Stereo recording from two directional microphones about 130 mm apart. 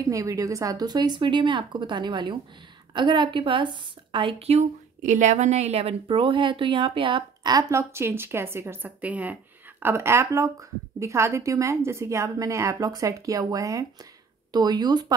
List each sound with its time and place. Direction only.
0.0 s a woman's voice: 25° right (ahead or behind)